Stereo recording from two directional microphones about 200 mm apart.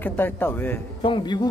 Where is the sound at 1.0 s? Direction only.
25° left (ahead or behind).